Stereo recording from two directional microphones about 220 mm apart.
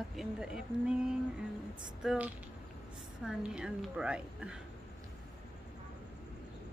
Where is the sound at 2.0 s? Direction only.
5° right (ahead or behind).